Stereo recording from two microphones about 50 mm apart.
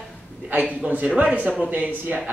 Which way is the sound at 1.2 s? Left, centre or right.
Right.